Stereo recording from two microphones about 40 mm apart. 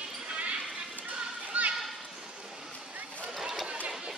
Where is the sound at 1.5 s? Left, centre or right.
Right.